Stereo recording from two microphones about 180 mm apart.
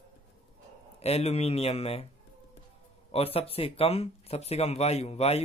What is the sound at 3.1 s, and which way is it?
Speech, 35° left (ahead or behind).